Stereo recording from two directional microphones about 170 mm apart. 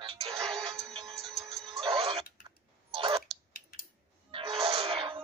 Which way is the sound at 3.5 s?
55° left (ahead or behind).